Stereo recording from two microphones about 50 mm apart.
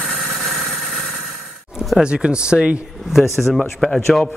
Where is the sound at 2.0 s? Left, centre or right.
Right.